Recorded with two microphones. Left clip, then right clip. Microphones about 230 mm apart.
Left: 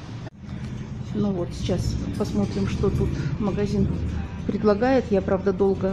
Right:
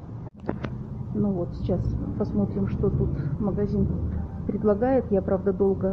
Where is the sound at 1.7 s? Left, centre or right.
Centre.